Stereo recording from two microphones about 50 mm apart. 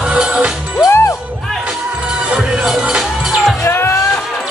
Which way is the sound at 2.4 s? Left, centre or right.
Centre.